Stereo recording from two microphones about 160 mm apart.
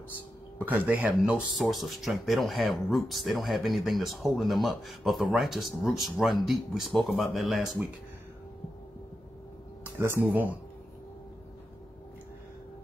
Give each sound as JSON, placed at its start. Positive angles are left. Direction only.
{"t": 0.7, "sound": "speech", "side_deg": -10}
{"t": 9.9, "sound": "speech", "side_deg": -10}